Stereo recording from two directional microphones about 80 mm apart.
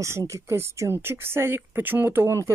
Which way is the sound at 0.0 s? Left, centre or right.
Right.